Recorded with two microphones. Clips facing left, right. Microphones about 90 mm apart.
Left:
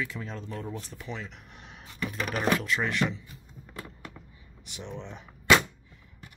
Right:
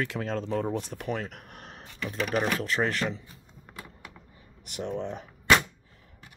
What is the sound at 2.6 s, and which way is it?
Speech, 40° right (ahead or behind).